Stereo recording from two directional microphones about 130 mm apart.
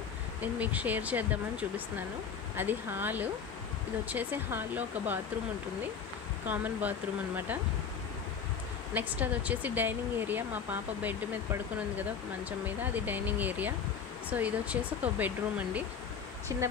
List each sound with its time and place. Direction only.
0.4 s speech: 10° right (ahead or behind)
6.4 s speech: 15° right (ahead or behind)
8.9 s speech: 10° right (ahead or behind)